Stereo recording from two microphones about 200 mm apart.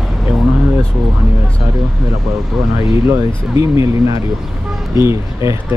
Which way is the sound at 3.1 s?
15° right (ahead or behind).